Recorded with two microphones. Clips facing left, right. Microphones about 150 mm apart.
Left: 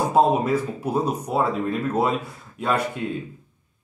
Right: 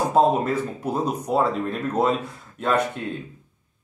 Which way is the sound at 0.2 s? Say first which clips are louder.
Left 1 dB; 5° left (ahead or behind).